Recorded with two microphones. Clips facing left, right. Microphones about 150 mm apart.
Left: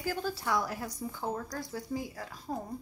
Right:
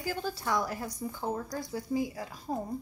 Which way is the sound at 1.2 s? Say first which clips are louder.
Right 2 dB; 10° right (ahead or behind).